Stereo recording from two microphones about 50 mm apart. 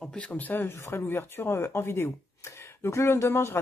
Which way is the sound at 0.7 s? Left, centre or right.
Left.